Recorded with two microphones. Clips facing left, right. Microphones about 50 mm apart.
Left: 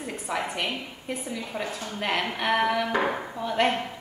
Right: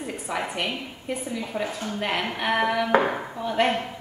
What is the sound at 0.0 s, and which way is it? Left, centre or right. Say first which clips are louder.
A woman's voice: right 1 dB; centre.